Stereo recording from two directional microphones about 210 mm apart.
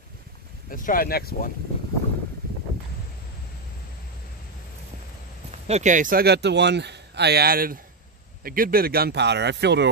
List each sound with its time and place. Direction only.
0.7 s speech: 40° left (ahead or behind)
5.7 s speech: 35° right (ahead or behind); by 9.8 s 55° right (ahead or behind)